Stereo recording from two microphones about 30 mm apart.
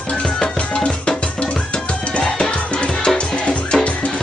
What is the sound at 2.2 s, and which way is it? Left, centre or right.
Music, left.